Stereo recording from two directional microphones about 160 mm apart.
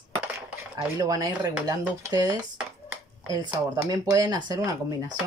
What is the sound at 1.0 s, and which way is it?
Speech, 25° right (ahead or behind).